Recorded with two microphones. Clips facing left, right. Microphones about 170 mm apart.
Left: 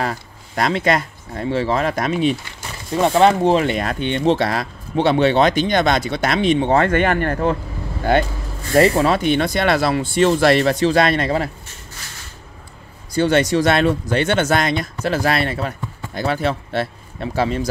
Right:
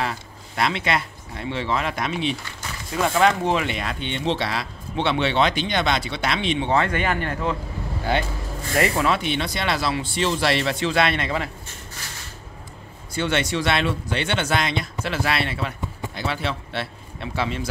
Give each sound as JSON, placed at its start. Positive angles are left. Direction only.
{"t": 0.0, "sound": "speech", "side_deg": 45}
{"t": 3.0, "sound": "speech", "side_deg": 30}
{"t": 8.7, "sound": "speech", "side_deg": 35}
{"t": 13.1, "sound": "speech", "side_deg": 40}